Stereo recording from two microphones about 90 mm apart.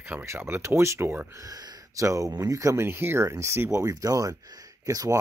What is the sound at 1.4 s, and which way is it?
Speech, 45° right (ahead or behind).